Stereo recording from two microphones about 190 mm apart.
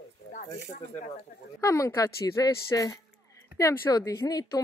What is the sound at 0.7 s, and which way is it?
Speech, 35° left (ahead or behind).